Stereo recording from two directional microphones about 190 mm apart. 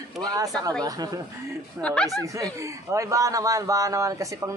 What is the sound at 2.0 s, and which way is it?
Speech, 15° right (ahead or behind).